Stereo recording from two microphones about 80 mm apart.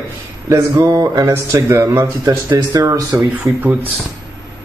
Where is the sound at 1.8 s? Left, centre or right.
Right.